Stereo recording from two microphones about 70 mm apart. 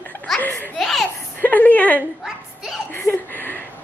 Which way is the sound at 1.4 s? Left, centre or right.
Left.